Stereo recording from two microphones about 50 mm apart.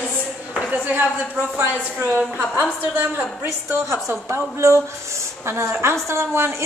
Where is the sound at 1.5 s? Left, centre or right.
Right.